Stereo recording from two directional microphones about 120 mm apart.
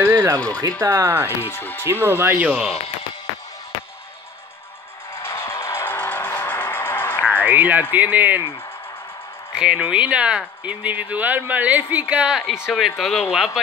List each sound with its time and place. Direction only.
0.0 s music: 25° right (ahead or behind)
0.6 s speech: 25° right (ahead or behind)
1.2 s speech: 20° left (ahead or behind)
1.9 s speech: 20° right (ahead or behind)
5.2 s music: 20° left (ahead or behind)
7.4 s speech: 15° right (ahead or behind)
9.5 s speech: 10° right (ahead or behind)